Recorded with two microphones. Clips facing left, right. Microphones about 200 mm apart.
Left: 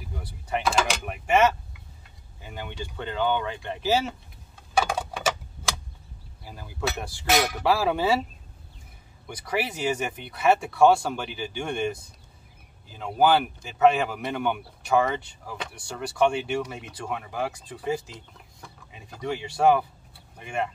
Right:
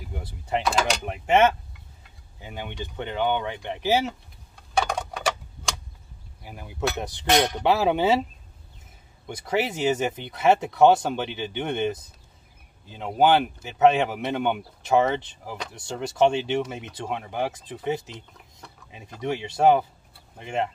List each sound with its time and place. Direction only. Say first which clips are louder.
0.1 s speech: right 2 dB; 25° right (ahead or behind)
2.4 s speech: right 1 dB; 20° right (ahead or behind)
4.7 s tick-tock: even; 5° left (ahead or behind)
6.4 s speech: right 3 dB; 20° right (ahead or behind)
7.2 s speech: right 2 dB; 5° left (ahead or behind)
7.6 s speech: right 2 dB; 20° right (ahead or behind)
9.3 s speech: right 3 dB; 25° right (ahead or behind)